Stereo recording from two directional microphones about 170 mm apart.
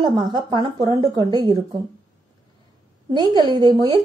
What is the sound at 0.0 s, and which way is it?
A woman's voice, 25° right (ahead or behind).